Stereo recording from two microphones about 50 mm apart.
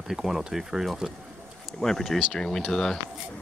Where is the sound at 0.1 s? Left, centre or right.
Centre.